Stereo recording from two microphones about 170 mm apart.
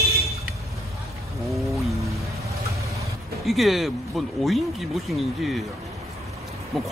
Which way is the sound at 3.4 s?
Centre (ahead or behind).